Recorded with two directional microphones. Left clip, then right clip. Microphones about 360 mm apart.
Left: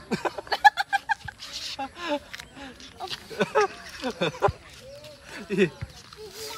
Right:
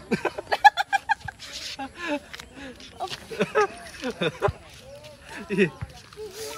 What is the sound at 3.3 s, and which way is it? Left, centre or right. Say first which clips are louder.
Speech: even; left.